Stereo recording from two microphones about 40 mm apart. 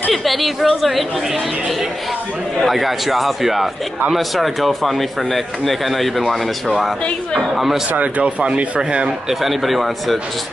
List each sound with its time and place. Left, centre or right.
0.1 s a woman's voice: centre
2.6 s speech: centre
7.5 s speech: centre
8.2 s speech: right
9.3 s speech: centre